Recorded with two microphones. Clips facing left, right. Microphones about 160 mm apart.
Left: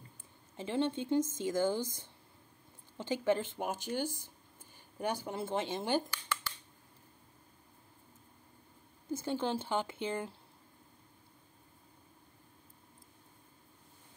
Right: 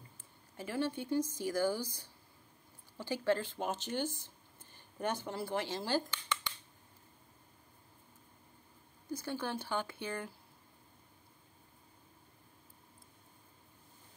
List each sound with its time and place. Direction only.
0.6 s a woman's voice: 25° left (ahead or behind)
6.1 s a sound: 5° left (ahead or behind)
9.1 s a woman's voice: 20° left (ahead or behind)